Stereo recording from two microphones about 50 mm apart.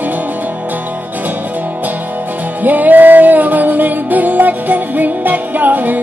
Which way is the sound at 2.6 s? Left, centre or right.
Right.